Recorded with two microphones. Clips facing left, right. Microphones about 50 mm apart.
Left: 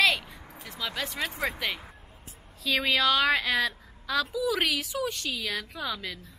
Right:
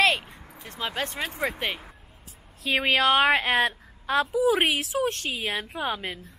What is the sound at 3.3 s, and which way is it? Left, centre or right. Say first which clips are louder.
A woman's voice: right 4 dB; right.